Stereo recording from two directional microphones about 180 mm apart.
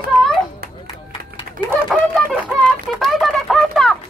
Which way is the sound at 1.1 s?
25° left (ahead or behind).